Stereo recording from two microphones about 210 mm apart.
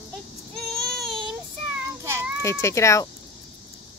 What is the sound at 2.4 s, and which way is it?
Speech, 15° left (ahead or behind).